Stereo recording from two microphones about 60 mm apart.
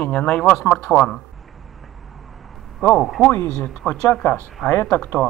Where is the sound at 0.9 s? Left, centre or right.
Centre.